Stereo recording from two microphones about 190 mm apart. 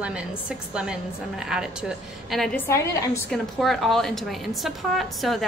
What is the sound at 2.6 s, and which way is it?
Speech, 15° left (ahead or behind).